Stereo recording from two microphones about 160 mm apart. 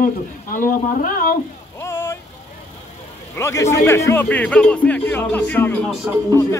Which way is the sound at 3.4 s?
15° left (ahead or behind).